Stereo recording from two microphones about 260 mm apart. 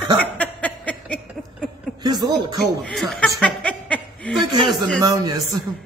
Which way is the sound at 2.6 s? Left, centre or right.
Centre.